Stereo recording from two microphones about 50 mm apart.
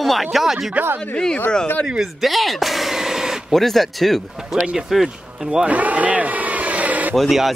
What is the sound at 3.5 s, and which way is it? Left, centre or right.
Speech, centre.